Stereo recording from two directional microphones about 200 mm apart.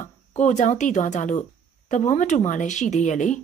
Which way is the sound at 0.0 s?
35° left (ahead or behind).